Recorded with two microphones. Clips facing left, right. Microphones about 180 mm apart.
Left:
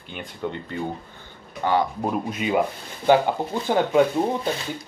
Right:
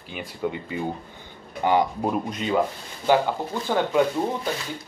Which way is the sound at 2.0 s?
5° left (ahead or behind).